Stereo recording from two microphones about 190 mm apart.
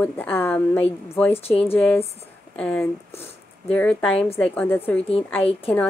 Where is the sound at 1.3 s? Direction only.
30° left (ahead or behind).